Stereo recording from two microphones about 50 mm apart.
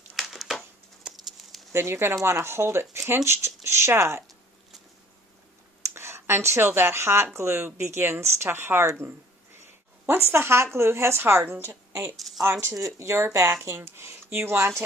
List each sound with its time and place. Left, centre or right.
0.1 s a sound: centre
1.7 s a woman's voice: right
5.8 s a woman's voice: right
10.0 s a woman's voice: right
11.6 s a woman's voice: right
12.4 s speech: right
13.7 s a woman's voice: right